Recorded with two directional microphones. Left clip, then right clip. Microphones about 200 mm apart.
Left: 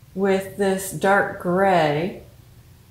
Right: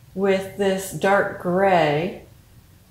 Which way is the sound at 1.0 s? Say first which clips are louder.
Left 1 dB; 15° left (ahead or behind).